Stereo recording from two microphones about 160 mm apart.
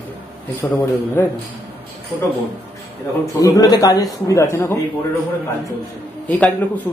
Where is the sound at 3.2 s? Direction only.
20° left (ahead or behind).